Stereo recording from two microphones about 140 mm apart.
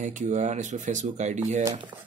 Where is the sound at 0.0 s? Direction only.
60° right (ahead or behind).